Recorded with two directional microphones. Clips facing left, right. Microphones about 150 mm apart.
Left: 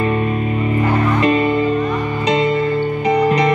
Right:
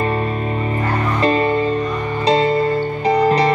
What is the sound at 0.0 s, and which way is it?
Music, 35° right (ahead or behind).